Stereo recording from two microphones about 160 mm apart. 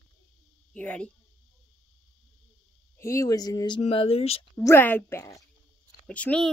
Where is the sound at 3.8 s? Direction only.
35° left (ahead or behind).